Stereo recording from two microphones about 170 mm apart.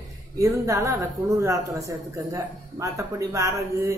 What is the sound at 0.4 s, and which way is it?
A woman's voice, 20° right (ahead or behind).